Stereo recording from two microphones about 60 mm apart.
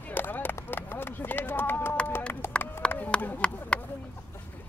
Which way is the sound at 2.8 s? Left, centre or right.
Centre.